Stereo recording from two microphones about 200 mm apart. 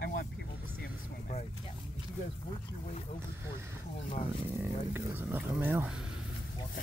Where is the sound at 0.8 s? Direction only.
40° left (ahead or behind).